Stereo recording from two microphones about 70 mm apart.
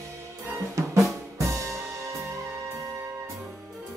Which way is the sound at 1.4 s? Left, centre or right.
Right.